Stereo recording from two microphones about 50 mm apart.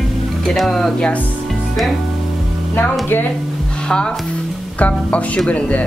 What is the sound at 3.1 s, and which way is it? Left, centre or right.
Speech, left.